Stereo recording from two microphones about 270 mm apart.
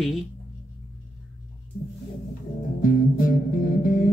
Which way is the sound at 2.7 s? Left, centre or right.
Left.